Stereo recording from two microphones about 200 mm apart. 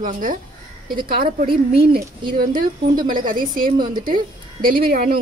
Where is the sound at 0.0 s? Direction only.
40° right (ahead or behind).